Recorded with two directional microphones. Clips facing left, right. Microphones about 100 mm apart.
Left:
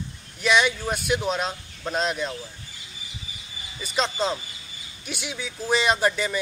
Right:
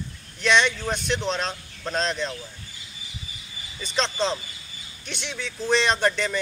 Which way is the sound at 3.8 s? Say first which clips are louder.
Even; 5° left (ahead or behind).